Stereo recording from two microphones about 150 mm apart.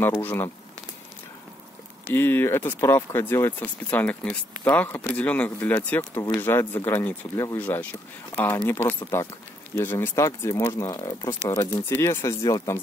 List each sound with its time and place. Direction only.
0.2 s speech: 10° left (ahead or behind)
2.1 s speech: 15° left (ahead or behind)